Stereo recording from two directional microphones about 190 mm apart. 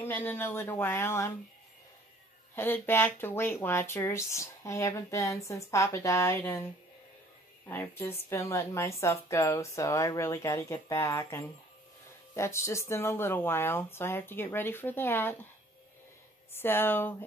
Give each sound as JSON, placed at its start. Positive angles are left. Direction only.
{"t": 0.0, "sound": "speech", "side_deg": 10}
{"t": 2.5, "sound": "speech", "side_deg": 10}
{"t": 7.6, "sound": "speech", "side_deg": 10}
{"t": 16.5, "sound": "speech", "side_deg": 10}